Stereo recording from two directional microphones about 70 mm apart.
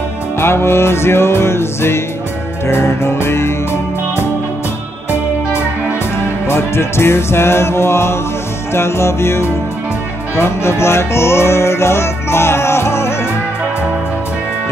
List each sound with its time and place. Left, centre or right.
0.4 s music: left
6.4 s music: left